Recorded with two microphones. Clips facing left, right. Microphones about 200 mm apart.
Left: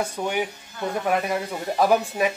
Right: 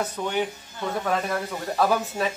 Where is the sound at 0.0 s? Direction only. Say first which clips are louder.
Left 1 dB; 10° left (ahead or behind).